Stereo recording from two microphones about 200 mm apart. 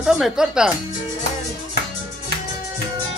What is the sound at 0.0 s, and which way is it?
Speech, centre (ahead or behind).